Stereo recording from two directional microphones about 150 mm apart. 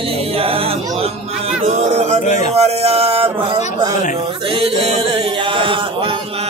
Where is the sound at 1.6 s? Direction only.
45° right (ahead or behind).